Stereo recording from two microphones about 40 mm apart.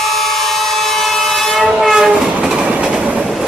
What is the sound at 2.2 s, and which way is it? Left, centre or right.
Train, centre.